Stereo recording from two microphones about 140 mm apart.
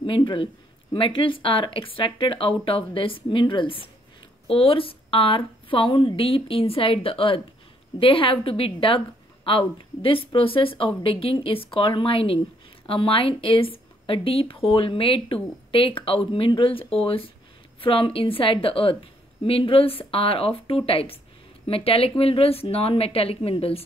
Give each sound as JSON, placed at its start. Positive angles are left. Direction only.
{"t": 0.0, "sound": "a woman's voice", "side_deg": 35}